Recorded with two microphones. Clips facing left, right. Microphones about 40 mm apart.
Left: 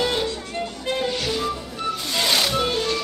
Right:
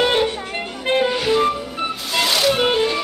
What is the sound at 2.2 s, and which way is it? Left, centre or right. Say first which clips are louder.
Music: right 5 dB; centre.